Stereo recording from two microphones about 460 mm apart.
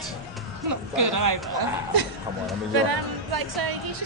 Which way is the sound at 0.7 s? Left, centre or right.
Right.